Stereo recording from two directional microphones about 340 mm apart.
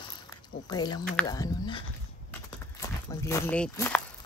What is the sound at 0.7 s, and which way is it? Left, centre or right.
Speech, centre.